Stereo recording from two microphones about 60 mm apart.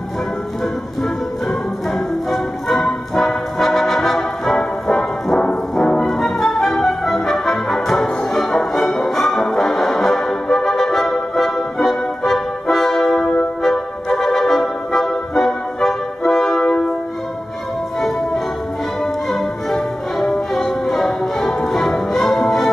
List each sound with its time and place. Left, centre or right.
2.3 s music: centre
13.2 s music: centre
14.1 s music: centre
19.3 s music: centre